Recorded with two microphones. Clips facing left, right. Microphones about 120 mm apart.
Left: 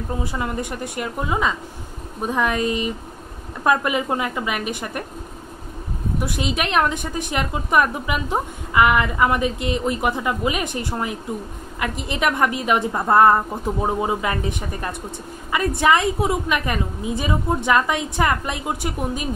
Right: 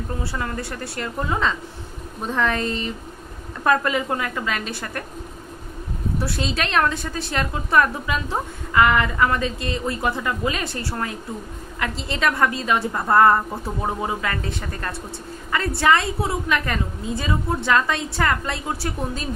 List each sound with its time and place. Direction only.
0.2 s a woman's voice: 15° left (ahead or behind)
6.1 s a woman's voice: 15° left (ahead or behind)